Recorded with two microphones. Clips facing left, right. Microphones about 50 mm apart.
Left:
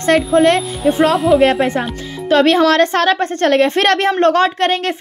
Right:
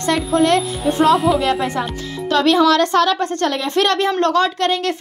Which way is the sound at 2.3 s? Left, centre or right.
Left.